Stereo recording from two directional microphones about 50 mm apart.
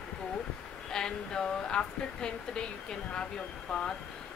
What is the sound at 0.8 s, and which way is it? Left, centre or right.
Speech, centre.